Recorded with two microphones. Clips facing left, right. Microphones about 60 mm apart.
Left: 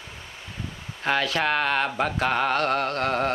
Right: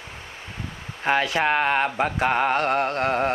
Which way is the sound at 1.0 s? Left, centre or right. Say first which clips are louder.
Right 2 dB; centre.